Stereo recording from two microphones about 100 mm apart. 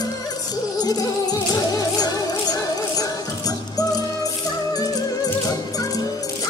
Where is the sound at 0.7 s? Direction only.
40° left (ahead or behind).